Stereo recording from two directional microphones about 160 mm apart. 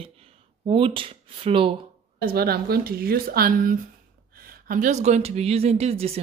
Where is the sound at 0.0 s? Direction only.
35° right (ahead or behind).